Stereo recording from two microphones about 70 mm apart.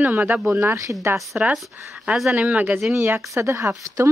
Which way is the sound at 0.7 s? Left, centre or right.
Right.